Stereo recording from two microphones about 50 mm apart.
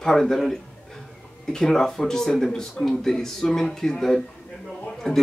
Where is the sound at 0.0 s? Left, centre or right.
Centre.